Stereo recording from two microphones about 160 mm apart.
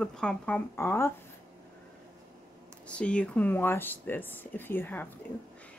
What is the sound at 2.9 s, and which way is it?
A woman's voice, 5° left (ahead or behind).